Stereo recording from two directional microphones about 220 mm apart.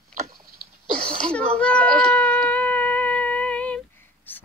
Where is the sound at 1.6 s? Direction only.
5° left (ahead or behind).